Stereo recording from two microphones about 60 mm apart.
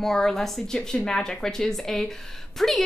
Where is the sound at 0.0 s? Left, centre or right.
Centre.